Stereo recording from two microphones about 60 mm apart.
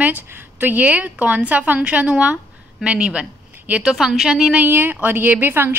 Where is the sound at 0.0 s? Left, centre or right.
Right.